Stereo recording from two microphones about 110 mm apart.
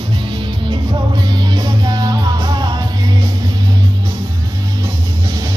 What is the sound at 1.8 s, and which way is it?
Music, 40° right (ahead or behind).